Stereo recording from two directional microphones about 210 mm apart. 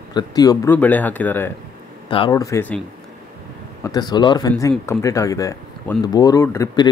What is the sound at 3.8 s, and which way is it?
Speech, 20° left (ahead or behind).